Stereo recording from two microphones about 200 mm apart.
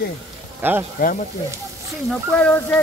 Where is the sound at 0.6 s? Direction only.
10° right (ahead or behind).